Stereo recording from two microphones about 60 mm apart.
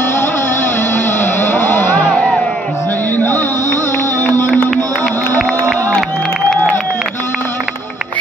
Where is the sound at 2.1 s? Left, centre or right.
Centre.